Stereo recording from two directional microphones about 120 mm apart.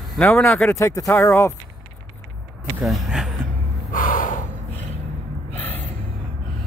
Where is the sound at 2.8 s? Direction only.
Centre (ahead or behind).